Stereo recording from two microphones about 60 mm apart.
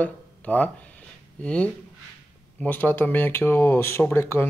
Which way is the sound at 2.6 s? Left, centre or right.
Left.